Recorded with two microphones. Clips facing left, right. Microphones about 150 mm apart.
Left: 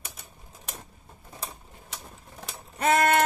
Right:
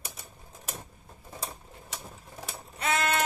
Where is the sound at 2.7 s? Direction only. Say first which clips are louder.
Left 7 dB; 50° left (ahead or behind).